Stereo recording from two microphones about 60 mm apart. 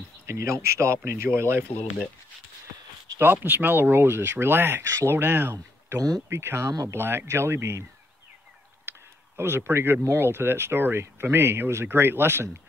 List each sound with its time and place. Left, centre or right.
0.3 s speech: right
3.2 s speech: right
4.8 s speech: right
9.4 s speech: right